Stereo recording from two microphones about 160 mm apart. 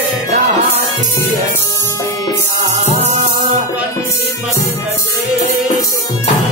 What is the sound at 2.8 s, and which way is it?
Music, 45° right (ahead or behind).